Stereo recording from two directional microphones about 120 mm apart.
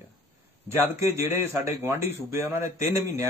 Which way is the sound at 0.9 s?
25° right (ahead or behind).